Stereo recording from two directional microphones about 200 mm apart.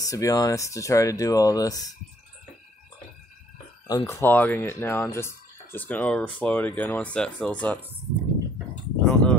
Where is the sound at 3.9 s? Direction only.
15° left (ahead or behind).